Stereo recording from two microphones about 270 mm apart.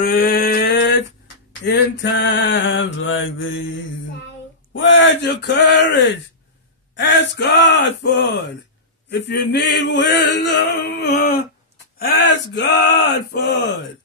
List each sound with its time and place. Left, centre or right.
0.0 s speech: left
4.7 s speech: left
12.7 s speech: left